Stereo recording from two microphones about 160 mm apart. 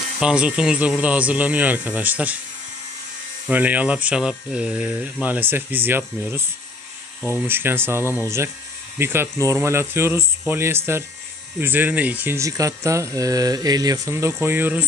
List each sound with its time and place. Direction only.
0.2 s speech: 5° right (ahead or behind)
3.4 s speech: 10° right (ahead or behind)